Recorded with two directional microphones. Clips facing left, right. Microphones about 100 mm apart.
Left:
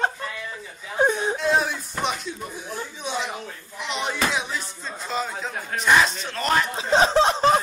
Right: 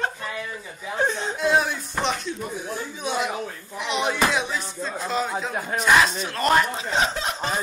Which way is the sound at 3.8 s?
5° right (ahead or behind).